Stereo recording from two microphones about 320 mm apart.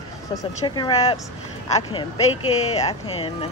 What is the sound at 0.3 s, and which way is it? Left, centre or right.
Speech, centre.